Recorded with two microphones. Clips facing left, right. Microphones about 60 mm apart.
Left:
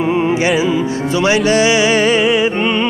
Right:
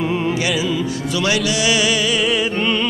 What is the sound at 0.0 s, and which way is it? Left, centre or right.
Music, left.